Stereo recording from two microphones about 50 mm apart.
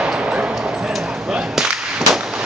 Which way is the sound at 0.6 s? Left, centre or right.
Centre.